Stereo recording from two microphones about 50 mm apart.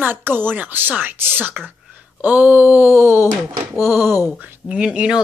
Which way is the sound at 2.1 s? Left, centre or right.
Right.